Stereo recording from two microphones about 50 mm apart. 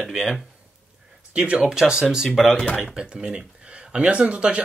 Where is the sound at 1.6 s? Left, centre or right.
Centre.